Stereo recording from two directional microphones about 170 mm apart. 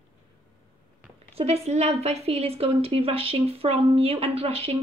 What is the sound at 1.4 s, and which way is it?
Speech, 40° right (ahead or behind).